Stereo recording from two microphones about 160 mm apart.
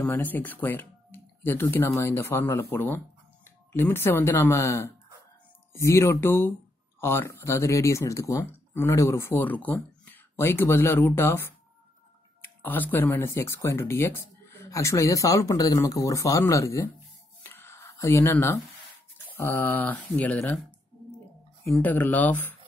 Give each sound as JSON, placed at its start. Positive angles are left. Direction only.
{"t": 0.0, "sound": "speech", "side_deg": 10}
{"t": 17.4, "sound": "a sound", "side_deg": 15}
{"t": 19.3, "sound": "speech", "side_deg": 15}
{"t": 21.6, "sound": "speech", "side_deg": 5}